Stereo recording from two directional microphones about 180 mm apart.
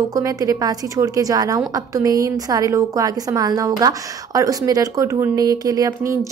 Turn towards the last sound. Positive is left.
turn(degrees=-15)  # may be behind; listen again after turning